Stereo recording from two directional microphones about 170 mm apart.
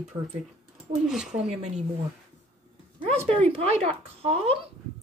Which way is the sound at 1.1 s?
Centre (ahead or behind).